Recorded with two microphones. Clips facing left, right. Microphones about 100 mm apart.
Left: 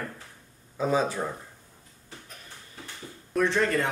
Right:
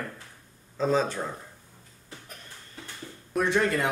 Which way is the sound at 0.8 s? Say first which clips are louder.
Even; 10° left (ahead or behind).